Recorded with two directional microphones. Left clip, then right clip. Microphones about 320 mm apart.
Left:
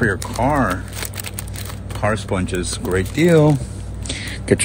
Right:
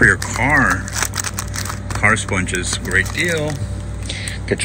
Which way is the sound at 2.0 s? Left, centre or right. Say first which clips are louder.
Right 4 dB; centre.